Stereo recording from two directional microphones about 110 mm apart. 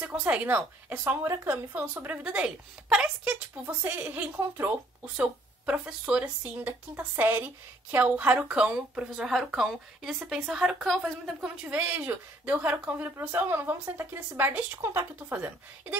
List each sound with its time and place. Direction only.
0.0 s a woman's voice: 15° right (ahead or behind)